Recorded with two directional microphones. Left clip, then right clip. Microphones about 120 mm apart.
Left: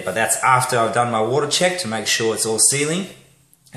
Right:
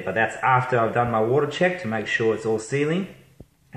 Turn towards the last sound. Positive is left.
turn(degrees=-5)  # may be behind; listen again after turning